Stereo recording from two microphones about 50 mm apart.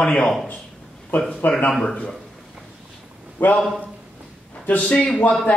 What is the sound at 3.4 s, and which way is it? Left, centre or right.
Speech, left.